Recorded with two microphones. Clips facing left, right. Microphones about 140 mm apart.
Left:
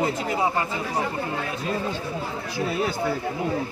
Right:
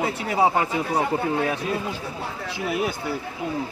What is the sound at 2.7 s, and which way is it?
Speech, 15° right (ahead or behind).